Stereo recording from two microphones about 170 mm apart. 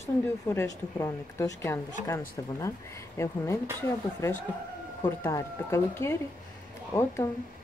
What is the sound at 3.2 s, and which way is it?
Speech, 15° left (ahead or behind).